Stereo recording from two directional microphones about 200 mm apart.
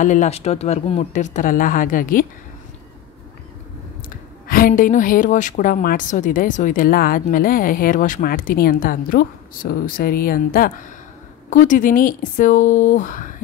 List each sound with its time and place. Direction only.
0.0 s speech: 40° left (ahead or behind)
4.5 s a woman's voice: 45° left (ahead or behind)